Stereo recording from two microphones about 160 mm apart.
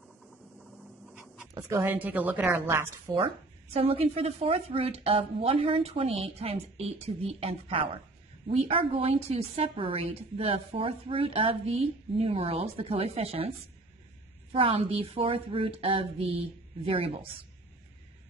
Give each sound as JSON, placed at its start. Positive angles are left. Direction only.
{"t": 1.1, "sound": "a sound", "side_deg": -10}
{"t": 1.5, "sound": "a woman's voice", "side_deg": -15}
{"t": 3.7, "sound": "a woman's voice", "side_deg": -35}
{"t": 14.5, "sound": "a woman's voice", "side_deg": -35}